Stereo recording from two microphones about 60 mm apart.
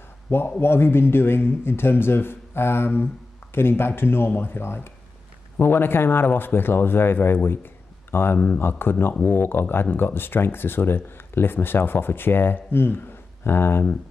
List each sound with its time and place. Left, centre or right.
0.3 s speech: left